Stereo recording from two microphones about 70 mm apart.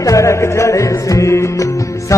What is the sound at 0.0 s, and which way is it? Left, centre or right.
Music, left.